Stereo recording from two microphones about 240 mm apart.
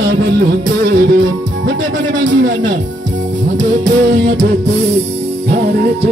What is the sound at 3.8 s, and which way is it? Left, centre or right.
Music, right.